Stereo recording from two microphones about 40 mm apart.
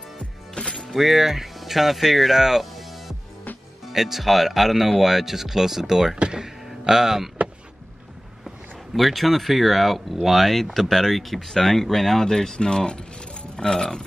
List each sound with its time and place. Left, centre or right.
0.6 s music: centre
0.8 s speech: centre
6.3 s a sound: centre
8.5 s speech: centre